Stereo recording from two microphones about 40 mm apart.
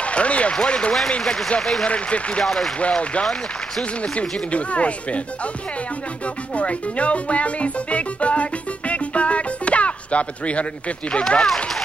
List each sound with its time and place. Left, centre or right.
0.0 s speech: left
1.2 s speech: centre
1.9 s speech: left
2.4 s speech: centre
4.0 s speech: left
11.3 s speech: centre